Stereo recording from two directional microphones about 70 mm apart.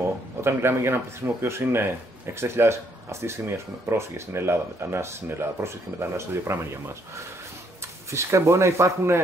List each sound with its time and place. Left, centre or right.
0.4 s speech: right
8.1 s speech: right